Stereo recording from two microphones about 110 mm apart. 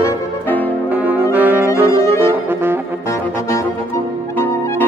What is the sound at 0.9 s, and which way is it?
Music, 15° right (ahead or behind).